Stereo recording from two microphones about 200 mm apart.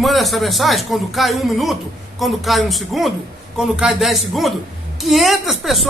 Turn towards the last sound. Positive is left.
turn(degrees=0)  # may be behind; listen again after turning